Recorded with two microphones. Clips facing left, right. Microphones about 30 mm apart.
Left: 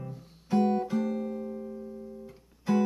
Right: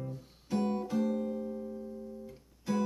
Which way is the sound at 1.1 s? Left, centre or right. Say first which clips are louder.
Left 1 dB; centre.